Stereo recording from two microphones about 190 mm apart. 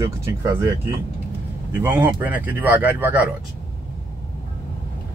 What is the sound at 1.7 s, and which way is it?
Speech, 10° right (ahead or behind).